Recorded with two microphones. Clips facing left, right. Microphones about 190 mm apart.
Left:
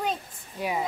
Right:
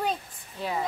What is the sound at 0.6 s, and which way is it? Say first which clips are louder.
Speech: left 1 dB; 10° left (ahead or behind).